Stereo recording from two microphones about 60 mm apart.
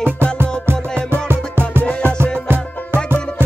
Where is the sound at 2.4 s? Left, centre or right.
Right.